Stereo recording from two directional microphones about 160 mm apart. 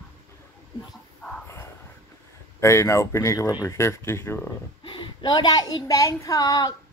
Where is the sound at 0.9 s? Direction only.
5° left (ahead or behind).